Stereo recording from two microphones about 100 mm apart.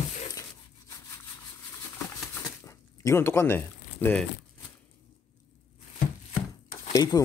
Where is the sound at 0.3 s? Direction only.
35° left (ahead or behind).